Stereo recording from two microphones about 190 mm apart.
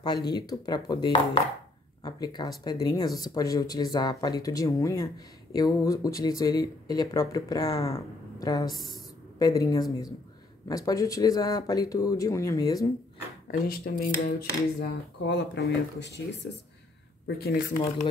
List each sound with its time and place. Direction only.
0.3 s speech: 20° left (ahead or behind)
8.7 s speech: centre (ahead or behind)
9.4 s speech: 20° left (ahead or behind)
13.5 s speech: 50° left (ahead or behind)
17.5 s speech: 50° left (ahead or behind)